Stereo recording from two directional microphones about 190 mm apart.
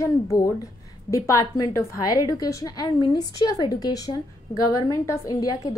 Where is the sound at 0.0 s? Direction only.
15° left (ahead or behind).